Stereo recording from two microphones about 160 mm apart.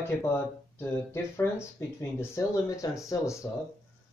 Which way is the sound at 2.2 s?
20° left (ahead or behind).